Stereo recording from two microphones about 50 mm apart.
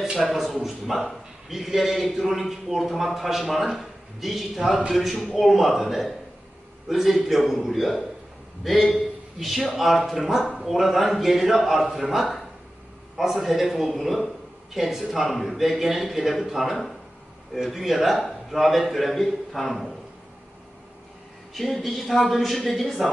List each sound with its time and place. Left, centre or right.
0.2 s a man's voice: centre
21.5 s a man's voice: centre